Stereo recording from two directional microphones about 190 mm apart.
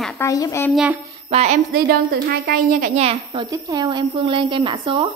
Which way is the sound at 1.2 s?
35° right (ahead or behind).